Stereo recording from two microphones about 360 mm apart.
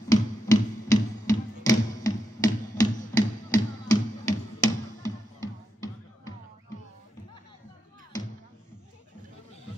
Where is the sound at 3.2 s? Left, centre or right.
Centre.